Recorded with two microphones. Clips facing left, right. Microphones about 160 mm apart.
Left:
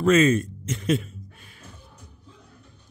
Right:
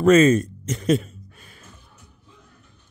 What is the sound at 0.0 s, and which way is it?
A man's voice, 40° right (ahead or behind).